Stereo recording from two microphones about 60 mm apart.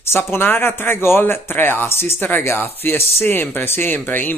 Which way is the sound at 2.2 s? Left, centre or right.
Left.